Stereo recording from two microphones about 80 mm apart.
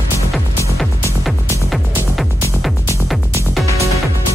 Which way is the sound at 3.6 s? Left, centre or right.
Left.